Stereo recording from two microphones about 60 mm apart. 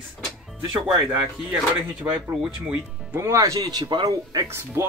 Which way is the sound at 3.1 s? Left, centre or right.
Right.